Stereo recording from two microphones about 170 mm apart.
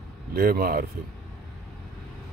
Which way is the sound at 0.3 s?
60° right (ahead or behind).